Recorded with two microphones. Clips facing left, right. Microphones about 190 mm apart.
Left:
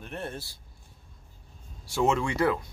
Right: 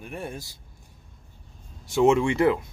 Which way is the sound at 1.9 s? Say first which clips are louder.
Right 6 dB; 25° right (ahead or behind).